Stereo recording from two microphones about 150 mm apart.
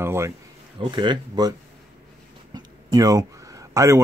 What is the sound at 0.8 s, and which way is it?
Speech, 30° right (ahead or behind).